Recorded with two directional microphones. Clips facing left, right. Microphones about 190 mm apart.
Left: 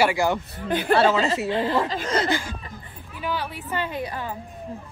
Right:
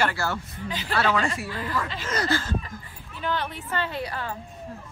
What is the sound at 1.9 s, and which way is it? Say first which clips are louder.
Speech: left 5 dB; 40° left (ahead or behind).